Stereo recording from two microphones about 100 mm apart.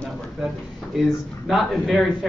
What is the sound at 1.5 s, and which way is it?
Speech, centre (ahead or behind).